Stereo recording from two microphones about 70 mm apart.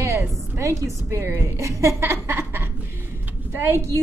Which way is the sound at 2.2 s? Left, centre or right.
Right.